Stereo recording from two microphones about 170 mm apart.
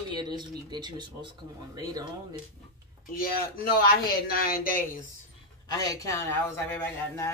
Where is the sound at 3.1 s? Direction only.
60° left (ahead or behind).